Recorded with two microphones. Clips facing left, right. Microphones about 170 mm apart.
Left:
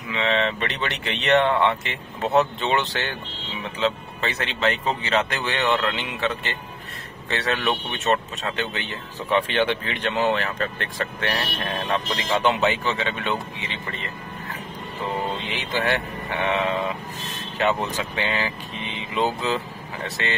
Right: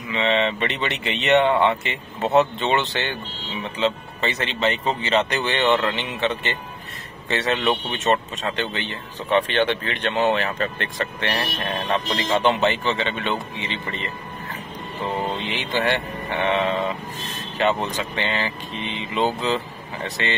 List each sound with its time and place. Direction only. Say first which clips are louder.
0.1 s speech: right 2 dB; centre (ahead or behind)
15.5 s speech: right 1 dB; centre (ahead or behind)
16.4 s sheep: right 2 dB; 5° left (ahead or behind)
17.9 s speech: right 1 dB; 5° left (ahead or behind)